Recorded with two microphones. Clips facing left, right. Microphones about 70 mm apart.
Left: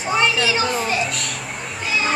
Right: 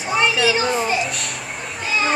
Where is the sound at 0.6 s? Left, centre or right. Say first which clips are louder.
Right 2 dB; centre.